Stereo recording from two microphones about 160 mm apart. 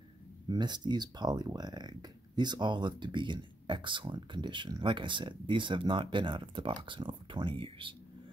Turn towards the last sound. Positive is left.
turn(degrees=-35)  # may be behind; listen again after turning